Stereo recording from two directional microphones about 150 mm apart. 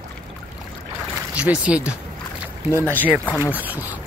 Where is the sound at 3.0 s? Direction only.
10° right (ahead or behind).